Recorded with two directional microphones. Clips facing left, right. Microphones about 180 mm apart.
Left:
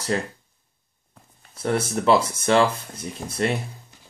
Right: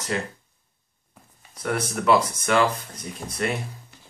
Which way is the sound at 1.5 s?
30° left (ahead or behind).